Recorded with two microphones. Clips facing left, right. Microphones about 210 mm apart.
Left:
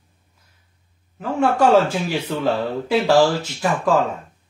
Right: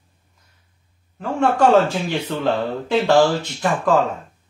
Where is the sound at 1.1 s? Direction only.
5° left (ahead or behind).